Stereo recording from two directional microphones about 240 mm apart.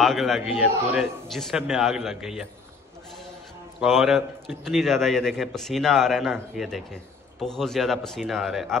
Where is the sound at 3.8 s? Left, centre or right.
Centre.